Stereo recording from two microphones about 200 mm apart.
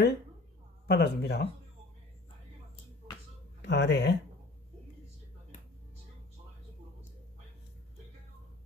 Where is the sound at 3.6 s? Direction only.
60° left (ahead or behind).